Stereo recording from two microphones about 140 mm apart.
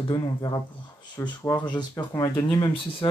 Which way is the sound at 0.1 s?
30° left (ahead or behind).